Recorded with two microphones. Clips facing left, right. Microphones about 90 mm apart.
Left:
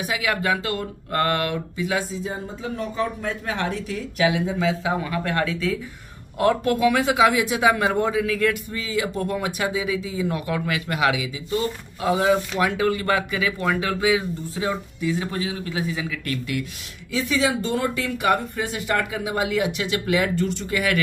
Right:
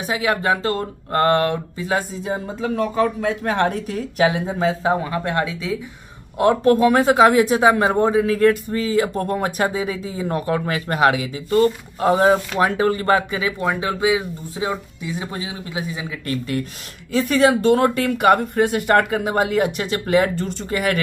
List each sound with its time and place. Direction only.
0.0 s speech: 30° right (ahead or behind)
2.2 s speech: 70° right (ahead or behind); by 4.9 s 40° right (ahead or behind)
5.0 s speech: 25° right (ahead or behind)
6.6 s speech: 40° right (ahead or behind); by 16.1 s 20° right (ahead or behind)
16.3 s speech: 35° right (ahead or behind)
17.1 s speech: 55° right (ahead or behind); by 21.0 s 35° right (ahead or behind)